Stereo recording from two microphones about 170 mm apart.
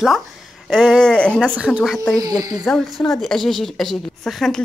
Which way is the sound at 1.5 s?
5° right (ahead or behind).